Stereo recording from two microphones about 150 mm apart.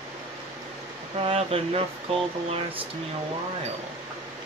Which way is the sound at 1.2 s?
40° right (ahead or behind).